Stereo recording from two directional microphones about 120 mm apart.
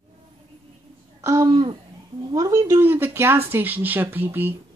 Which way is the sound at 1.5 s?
45° right (ahead or behind).